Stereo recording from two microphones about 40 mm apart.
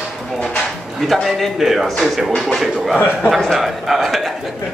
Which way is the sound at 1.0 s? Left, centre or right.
Centre.